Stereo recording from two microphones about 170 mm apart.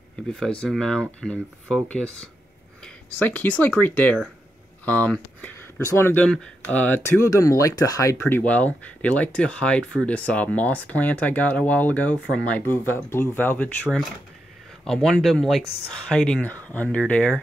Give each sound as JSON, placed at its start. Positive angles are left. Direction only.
{"t": 0.3, "sound": "speech", "side_deg": 5}
{"t": 14.9, "sound": "speech", "side_deg": 5}